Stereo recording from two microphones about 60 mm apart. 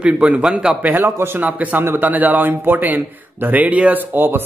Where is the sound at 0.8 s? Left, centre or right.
Right.